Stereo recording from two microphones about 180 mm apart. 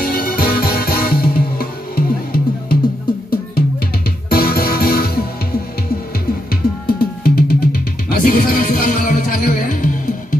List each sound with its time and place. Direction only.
0.0 s music: 55° left (ahead or behind)